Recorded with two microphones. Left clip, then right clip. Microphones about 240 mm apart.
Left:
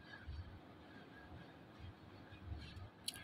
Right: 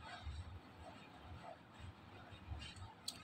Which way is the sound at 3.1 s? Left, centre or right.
Centre.